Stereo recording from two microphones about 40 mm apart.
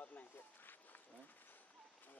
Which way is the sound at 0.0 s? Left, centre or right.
Left.